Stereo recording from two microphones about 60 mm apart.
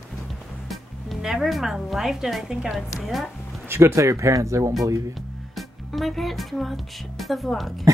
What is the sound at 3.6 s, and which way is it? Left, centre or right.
Speech, right.